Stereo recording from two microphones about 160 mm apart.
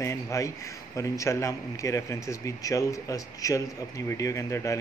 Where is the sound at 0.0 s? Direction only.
20° left (ahead or behind).